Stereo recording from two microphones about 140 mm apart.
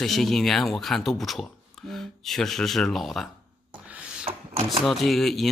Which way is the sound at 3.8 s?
10° right (ahead or behind).